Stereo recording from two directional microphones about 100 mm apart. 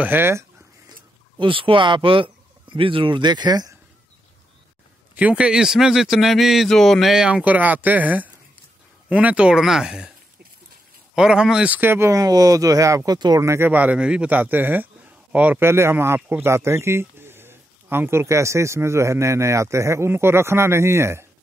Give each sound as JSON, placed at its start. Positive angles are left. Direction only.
{"t": 0.0, "sound": "speech", "side_deg": -20}
{"t": 1.4, "sound": "speech", "side_deg": -60}
{"t": 5.1, "sound": "a man's voice", "side_deg": -10}
{"t": 11.1, "sound": "a man's voice", "side_deg": -5}
{"t": 12.2, "sound": "speech", "side_deg": -40}
{"t": 13.4, "sound": "speech", "side_deg": -30}
{"t": 13.7, "sound": "a man's voice", "side_deg": -15}